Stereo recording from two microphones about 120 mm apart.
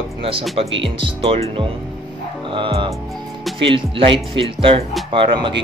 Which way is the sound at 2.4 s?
45° right (ahead or behind).